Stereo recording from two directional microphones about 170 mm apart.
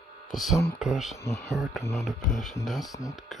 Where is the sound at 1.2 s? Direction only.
15° left (ahead or behind).